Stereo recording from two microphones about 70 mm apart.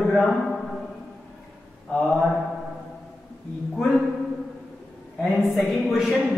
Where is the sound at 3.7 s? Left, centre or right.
Centre.